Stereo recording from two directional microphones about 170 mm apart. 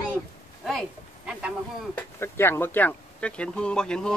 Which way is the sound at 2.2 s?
15° left (ahead or behind).